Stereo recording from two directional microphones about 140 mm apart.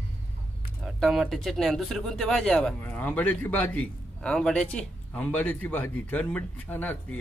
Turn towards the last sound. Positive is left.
turn(degrees=15)  # may be behind; listen again after turning